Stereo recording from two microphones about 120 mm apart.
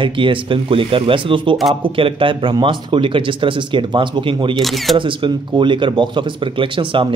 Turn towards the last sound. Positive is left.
turn(degrees=-45)  # may be behind; listen again after turning